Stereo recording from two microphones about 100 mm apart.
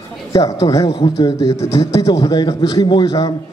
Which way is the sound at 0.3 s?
40° left (ahead or behind).